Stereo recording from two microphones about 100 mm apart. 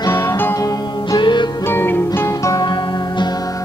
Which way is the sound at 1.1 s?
50° left (ahead or behind).